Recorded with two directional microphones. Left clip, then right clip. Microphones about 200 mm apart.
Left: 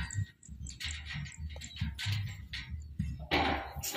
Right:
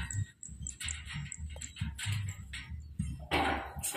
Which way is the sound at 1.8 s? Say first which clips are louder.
Left 2 dB; 15° left (ahead or behind).